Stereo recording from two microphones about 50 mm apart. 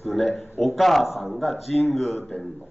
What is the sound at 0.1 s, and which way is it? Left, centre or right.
A man's voice, centre.